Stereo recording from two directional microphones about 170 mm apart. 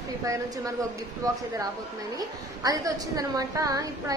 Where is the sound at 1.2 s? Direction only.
20° right (ahead or behind).